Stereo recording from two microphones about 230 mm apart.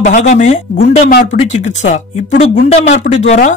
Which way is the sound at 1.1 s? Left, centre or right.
Left.